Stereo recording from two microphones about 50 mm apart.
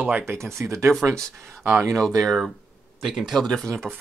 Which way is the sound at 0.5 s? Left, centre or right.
Right.